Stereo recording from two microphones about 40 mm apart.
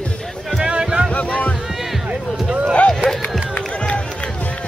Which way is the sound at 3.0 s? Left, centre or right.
Right.